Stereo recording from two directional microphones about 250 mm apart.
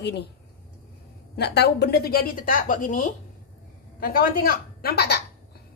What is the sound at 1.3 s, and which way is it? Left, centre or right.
A woman's voice, left.